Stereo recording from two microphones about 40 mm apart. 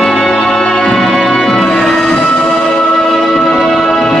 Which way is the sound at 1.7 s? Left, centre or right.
Centre.